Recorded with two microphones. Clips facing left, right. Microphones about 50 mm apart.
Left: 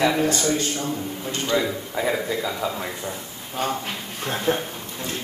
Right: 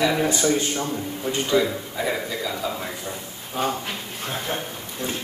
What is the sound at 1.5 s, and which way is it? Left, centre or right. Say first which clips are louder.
Speech: right 1 dB; centre.